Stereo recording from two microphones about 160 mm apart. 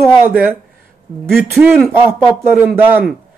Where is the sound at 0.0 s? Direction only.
10° right (ahead or behind).